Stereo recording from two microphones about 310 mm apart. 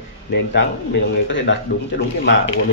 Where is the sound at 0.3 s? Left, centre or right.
Left.